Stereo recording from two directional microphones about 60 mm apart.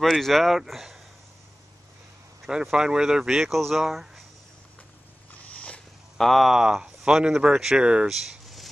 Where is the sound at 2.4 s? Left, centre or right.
Centre.